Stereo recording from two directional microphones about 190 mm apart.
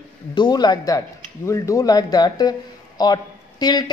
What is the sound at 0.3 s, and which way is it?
A woman's voice, 20° left (ahead or behind).